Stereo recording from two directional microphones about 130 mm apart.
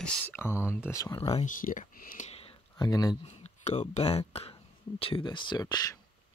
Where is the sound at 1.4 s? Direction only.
90° left.